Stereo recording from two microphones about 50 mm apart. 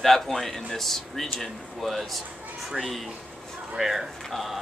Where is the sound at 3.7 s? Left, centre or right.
Centre.